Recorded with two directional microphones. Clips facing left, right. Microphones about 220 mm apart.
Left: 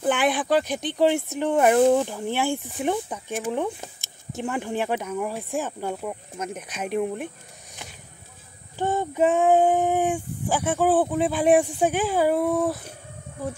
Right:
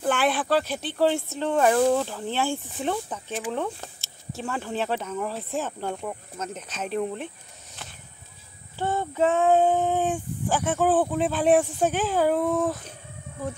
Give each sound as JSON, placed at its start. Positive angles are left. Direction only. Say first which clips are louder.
{"t": 0.0, "sound": "speech", "louder": "left 2 dB", "side_deg": 15}
{"t": 8.7, "sound": "speech", "louder": "left 2 dB", "side_deg": 15}